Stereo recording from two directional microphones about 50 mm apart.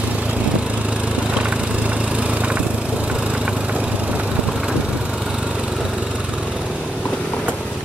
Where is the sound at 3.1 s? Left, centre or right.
Right.